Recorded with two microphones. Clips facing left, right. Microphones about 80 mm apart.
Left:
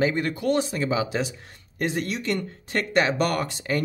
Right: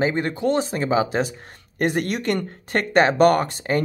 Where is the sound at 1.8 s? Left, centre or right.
Right.